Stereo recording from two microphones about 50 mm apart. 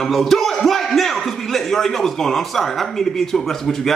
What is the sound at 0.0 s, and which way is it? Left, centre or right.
Speech, centre.